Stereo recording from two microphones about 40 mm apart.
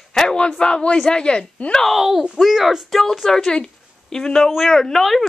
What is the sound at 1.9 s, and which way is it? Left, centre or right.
Speech, centre.